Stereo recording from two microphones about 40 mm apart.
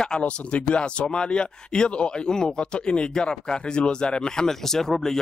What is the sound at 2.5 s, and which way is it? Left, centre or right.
Speech, left.